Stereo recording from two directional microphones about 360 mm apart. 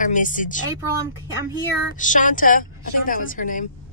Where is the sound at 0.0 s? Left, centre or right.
Left.